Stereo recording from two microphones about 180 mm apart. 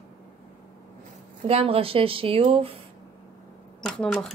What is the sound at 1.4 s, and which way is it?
A woman's voice, 30° right (ahead or behind).